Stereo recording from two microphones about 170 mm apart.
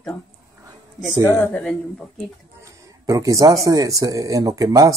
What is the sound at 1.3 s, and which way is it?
Speech, 10° left (ahead or behind).